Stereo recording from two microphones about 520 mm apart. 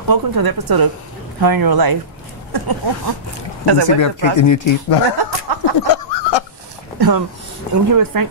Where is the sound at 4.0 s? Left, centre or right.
Left.